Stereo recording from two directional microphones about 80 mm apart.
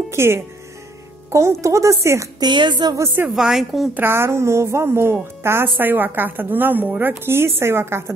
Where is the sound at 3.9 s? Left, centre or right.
Right.